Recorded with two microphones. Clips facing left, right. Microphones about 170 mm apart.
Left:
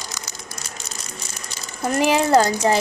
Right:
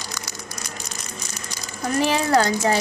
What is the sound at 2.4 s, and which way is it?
Speech, 30° left (ahead or behind).